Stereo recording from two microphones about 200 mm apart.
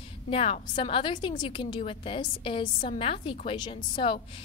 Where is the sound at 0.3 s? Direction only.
30° left (ahead or behind).